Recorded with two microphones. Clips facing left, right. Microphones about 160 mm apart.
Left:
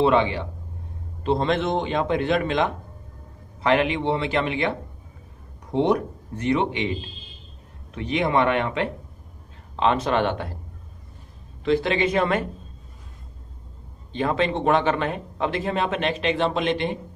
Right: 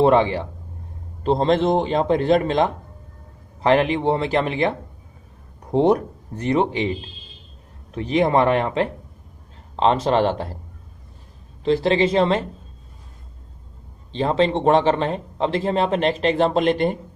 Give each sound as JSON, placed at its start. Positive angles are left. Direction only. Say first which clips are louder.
{"t": 0.0, "sound": "speech", "louder": "right 3 dB", "side_deg": -40}
{"t": 7.9, "sound": "speech", "louder": "right 4 dB", "side_deg": -40}
{"t": 11.6, "sound": "speech", "louder": "right 3 dB", "side_deg": -35}
{"t": 14.1, "sound": "speech", "louder": "right 4 dB", "side_deg": -30}